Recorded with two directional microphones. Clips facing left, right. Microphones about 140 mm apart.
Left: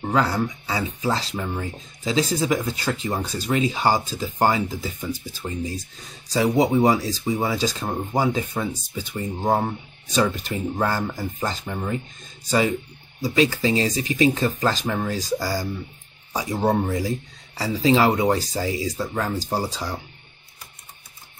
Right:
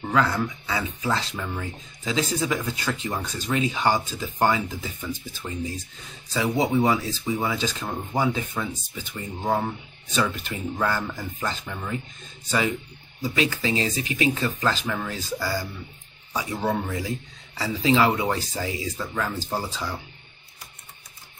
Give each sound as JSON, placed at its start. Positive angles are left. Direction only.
{"t": 0.0, "sound": "speech", "side_deg": 35}